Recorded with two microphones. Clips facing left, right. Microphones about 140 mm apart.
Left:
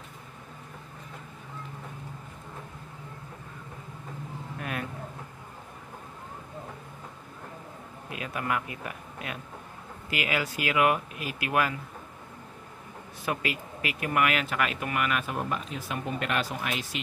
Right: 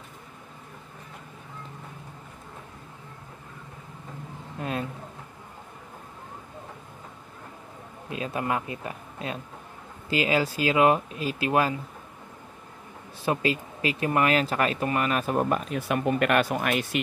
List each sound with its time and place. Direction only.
4.6 s vehicle: 25° right (ahead or behind)
8.1 s speech: 30° right (ahead or behind)
13.2 s speech: 30° right (ahead or behind); by 17.0 s 55° right (ahead or behind)